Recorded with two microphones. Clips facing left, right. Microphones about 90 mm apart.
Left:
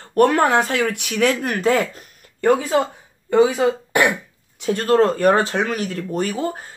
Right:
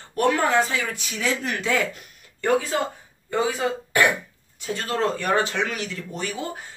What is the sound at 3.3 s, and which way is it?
Speech, 20° left (ahead or behind).